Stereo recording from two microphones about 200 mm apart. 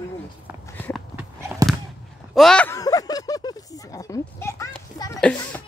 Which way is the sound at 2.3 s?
5° left (ahead or behind).